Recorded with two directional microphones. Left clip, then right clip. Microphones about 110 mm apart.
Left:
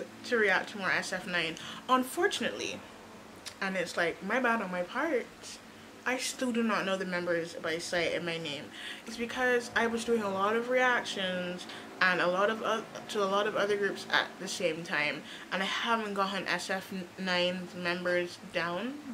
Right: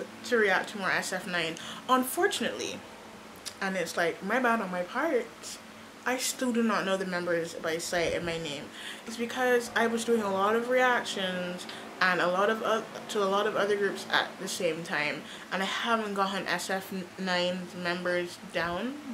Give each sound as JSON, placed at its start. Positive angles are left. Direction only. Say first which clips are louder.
{"t": 0.3, "sound": "speech", "louder": "right 2 dB", "side_deg": -5}